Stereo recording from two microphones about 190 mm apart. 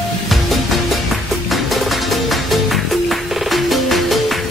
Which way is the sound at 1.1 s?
Centre (ahead or behind).